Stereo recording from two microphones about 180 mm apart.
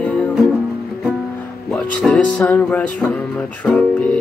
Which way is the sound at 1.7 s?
5° left (ahead or behind).